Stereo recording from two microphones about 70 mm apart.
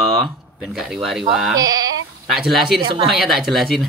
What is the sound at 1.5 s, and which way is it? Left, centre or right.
Speech, right.